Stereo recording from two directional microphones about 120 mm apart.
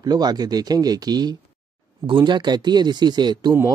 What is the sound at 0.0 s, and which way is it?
Speech, 35° right (ahead or behind).